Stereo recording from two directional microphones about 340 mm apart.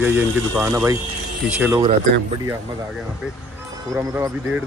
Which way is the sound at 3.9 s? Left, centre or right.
Centre.